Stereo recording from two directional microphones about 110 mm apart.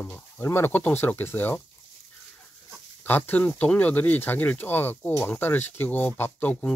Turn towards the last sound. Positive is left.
turn(degrees=15)  # may be behind; listen again after turning